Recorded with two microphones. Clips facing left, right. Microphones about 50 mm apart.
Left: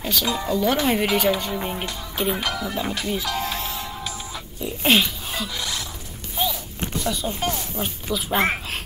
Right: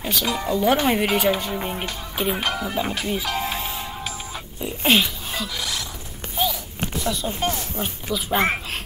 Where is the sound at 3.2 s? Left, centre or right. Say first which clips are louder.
Right 1 dB; centre.